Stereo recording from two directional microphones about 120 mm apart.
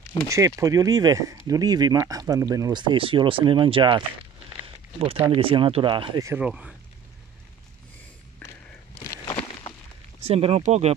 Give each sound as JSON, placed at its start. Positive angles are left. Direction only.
{"t": 0.3, "sound": "speech", "side_deg": -25}
{"t": 5.0, "sound": "speech", "side_deg": -55}
{"t": 6.3, "sound": "speech", "side_deg": -10}
{"t": 8.4, "sound": "walk", "side_deg": 10}
{"t": 10.2, "sound": "speech", "side_deg": -55}